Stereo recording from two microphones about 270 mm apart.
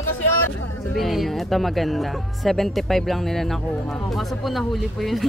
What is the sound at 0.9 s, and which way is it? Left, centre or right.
Speech, centre.